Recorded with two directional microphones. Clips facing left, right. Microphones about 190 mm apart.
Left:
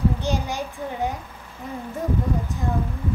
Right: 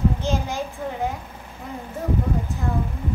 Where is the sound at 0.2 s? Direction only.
15° left (ahead or behind).